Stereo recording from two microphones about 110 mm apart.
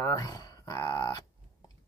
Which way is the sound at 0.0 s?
30° left (ahead or behind).